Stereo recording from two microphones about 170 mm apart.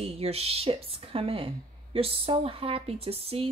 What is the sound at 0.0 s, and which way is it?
Speech, 35° right (ahead or behind).